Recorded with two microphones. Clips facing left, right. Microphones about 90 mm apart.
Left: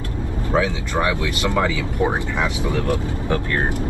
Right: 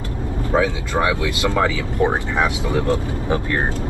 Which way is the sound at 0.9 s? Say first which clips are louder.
Right 1 dB; 20° right (ahead or behind).